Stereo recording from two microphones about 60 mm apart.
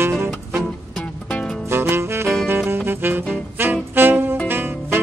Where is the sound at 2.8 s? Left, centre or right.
Right.